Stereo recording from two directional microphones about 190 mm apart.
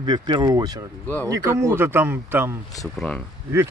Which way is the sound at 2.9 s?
5° left (ahead or behind).